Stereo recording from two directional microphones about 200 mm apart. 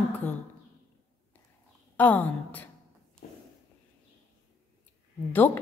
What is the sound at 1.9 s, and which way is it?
Speech, 10° left (ahead or behind).